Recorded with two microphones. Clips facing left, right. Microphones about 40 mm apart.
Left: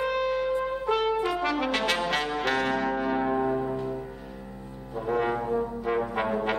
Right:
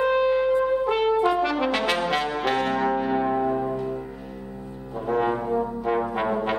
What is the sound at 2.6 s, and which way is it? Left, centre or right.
Music, centre.